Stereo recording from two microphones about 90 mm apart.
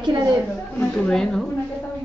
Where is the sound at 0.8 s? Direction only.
10° left (ahead or behind).